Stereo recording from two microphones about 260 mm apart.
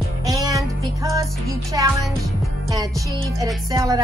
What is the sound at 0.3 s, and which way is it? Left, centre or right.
Music, centre.